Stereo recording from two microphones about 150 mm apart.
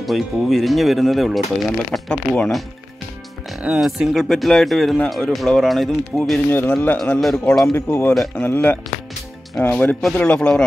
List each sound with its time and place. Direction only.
0.0 s speech: centre (ahead or behind)
3.6 s speech: 5° right (ahead or behind)
6.5 s speech: 15° left (ahead or behind)
7.7 s speech: 15° left (ahead or behind)
8.1 s speech: centre (ahead or behind)
8.5 s speech: 10° left (ahead or behind)